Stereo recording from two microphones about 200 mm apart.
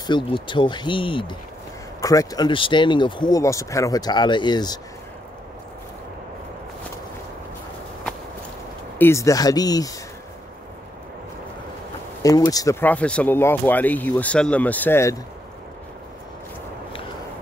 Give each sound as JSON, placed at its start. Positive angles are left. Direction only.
{"t": 0.0, "sound": "speech", "side_deg": 25}
{"t": 8.9, "sound": "speech", "side_deg": 10}
{"t": 12.2, "sound": "speech", "side_deg": 15}